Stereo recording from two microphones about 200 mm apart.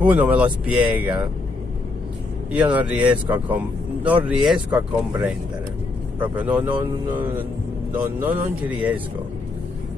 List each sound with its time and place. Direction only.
0.0 s speech: 5° right (ahead or behind)
2.5 s speech: 5° right (ahead or behind)
8.0 s speech: 10° right (ahead or behind)